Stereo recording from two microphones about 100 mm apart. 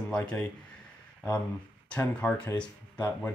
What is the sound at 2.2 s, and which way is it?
Speech, 10° left (ahead or behind).